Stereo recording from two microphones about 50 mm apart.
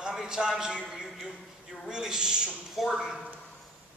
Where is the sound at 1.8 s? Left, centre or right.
Centre.